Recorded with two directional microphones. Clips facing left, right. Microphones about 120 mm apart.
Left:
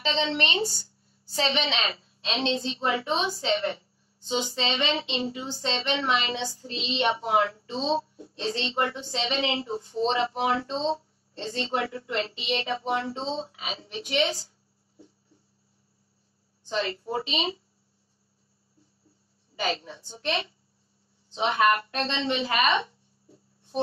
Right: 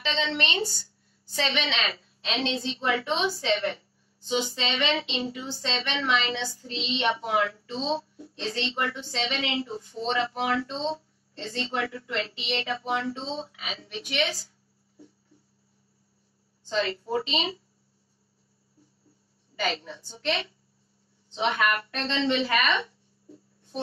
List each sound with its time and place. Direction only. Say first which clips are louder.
0.0 s speech: left 2 dB; 25° left (ahead or behind)
16.6 s a woman's voice: right 1 dB; 20° left (ahead or behind)
19.6 s speech: even; 25° left (ahead or behind)